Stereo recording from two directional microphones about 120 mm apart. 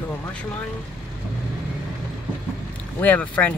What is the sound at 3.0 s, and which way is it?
Speech, 15° left (ahead or behind).